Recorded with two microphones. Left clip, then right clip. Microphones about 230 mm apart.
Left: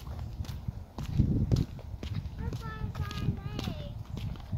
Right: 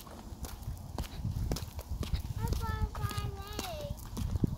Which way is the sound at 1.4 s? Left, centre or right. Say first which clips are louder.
Left 4 dB; right.